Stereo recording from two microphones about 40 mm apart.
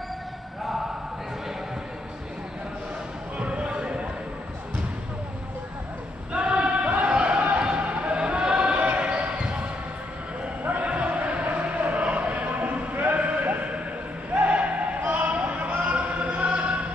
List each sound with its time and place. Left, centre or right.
3.3 s basketball bounce: right
6.3 s choir: right
7.1 s a sound: right
7.6 s music: right
8.7 s basketball bounce: right
10.6 s a sound: right
13.0 s music: right
14.3 s a sound: right
15.8 s music: right